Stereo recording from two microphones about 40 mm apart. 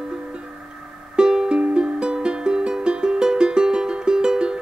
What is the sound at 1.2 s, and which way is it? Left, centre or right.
Music, centre.